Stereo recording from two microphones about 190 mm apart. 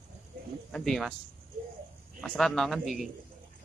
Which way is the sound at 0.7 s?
Centre (ahead or behind).